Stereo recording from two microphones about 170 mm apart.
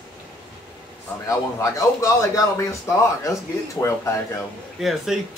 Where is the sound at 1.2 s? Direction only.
20° left (ahead or behind).